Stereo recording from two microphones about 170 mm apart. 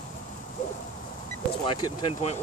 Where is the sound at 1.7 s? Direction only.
25° left (ahead or behind).